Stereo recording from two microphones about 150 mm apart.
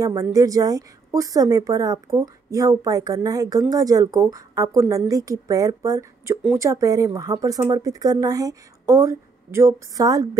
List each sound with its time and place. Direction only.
0.0 s a woman's voice: 25° right (ahead or behind)